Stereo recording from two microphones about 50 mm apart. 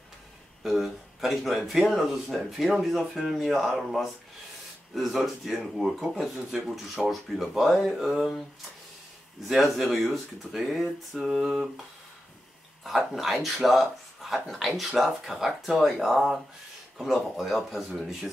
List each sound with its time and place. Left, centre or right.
0.7 s speech: centre
9.5 s speech: centre
13.1 s speech: centre
17.0 s speech: centre